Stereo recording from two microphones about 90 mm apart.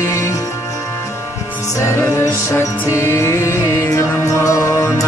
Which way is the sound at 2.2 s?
30° left (ahead or behind).